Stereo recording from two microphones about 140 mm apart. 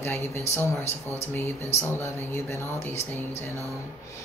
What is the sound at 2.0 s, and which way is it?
Speech, 20° left (ahead or behind).